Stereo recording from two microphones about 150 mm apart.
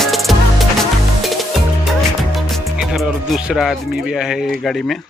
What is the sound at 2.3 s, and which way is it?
Music, centre (ahead or behind).